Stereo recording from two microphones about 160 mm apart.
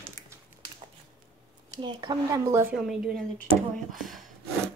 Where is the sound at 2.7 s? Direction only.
5° right (ahead or behind).